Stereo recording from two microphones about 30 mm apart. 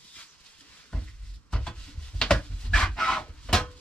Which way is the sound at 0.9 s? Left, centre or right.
Left.